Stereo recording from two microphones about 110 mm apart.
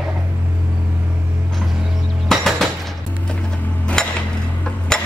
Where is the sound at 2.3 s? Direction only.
Centre (ahead or behind).